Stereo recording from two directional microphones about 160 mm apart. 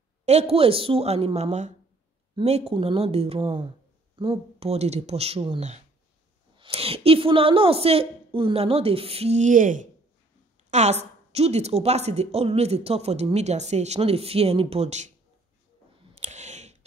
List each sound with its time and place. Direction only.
0.2 s a woman's voice: 40° right (ahead or behind)
16.2 s clicking: 45° right (ahead or behind)